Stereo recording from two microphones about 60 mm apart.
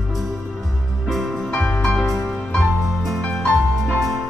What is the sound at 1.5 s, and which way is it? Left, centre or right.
Music, left.